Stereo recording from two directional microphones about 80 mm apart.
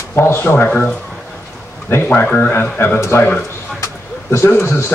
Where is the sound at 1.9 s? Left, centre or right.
Left.